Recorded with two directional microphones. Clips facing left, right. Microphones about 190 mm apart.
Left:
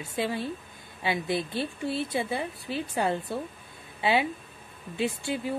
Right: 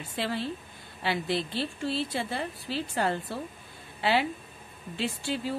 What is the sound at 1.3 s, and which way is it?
Speech, 55° left (ahead or behind).